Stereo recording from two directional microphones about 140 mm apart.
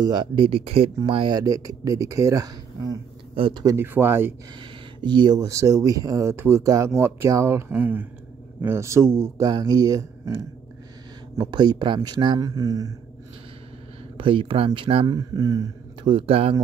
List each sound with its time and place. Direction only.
0.0 s speech: 35° right (ahead or behind)
1.4 s speech: 25° right (ahead or behind)
3.3 s speech: 40° right (ahead or behind)
3.6 s speech: 15° right (ahead or behind)
5.0 s speech: 30° right (ahead or behind)
14.1 s speech: 35° right (ahead or behind)
15.0 s speech: 25° right (ahead or behind)
16.0 s speech: 35° right (ahead or behind)